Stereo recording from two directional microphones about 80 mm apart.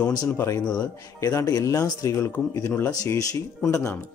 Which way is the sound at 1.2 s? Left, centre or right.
Left.